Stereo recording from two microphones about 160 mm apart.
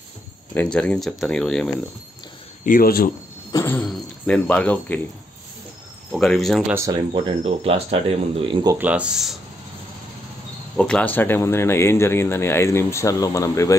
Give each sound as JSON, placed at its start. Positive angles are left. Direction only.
{"t": 0.6, "sound": "speech", "side_deg": 5}
{"t": 2.6, "sound": "speech", "side_deg": 65}
{"t": 3.5, "sound": "speech", "side_deg": 10}
{"t": 6.1, "sound": "speech", "side_deg": 0}
{"t": 7.1, "sound": "speech", "side_deg": -35}
{"t": 8.7, "sound": "speech", "side_deg": -10}
{"t": 10.8, "sound": "speech", "side_deg": 5}